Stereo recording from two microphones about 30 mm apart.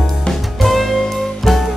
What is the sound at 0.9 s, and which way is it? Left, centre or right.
Music, centre.